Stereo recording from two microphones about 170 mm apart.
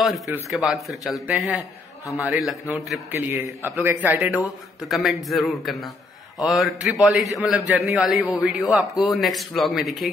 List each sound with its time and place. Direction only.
0.0 s a man's voice: centre (ahead or behind)
1.6 s a man's voice: 20° left (ahead or behind)
2.2 s a man's voice: centre (ahead or behind)
3.1 s a man's voice: 10° right (ahead or behind)